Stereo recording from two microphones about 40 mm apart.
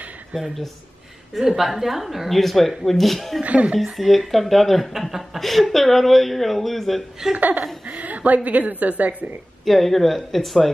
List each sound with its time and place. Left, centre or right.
1.3 s speech: centre
3.4 s a woman's voice: right
3.9 s speech: centre
7.3 s laughter: right
7.8 s a sound: right
8.5 s a woman's voice: right
9.7 s speech: centre